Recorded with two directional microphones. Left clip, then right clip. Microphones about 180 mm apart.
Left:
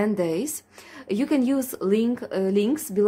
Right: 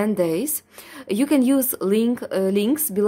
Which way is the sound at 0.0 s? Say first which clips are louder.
Right 3 dB; 20° right (ahead or behind).